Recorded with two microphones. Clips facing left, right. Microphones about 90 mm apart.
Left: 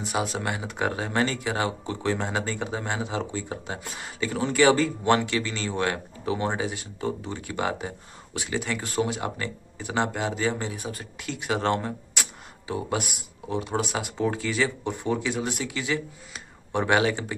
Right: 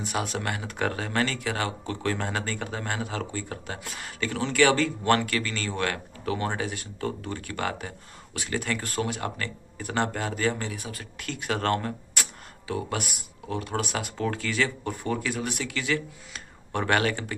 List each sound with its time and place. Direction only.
0.1 s speech: 5° left (ahead or behind)
0.4 s speech: 15° left (ahead or behind)
11.2 s speech: 15° left (ahead or behind)